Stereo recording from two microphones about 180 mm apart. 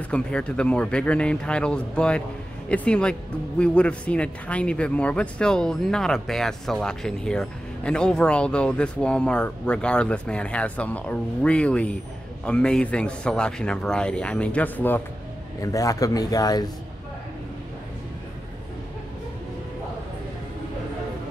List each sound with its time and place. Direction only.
0.1 s a man's voice: 5° left (ahead or behind); by 16.7 s 20° left (ahead or behind)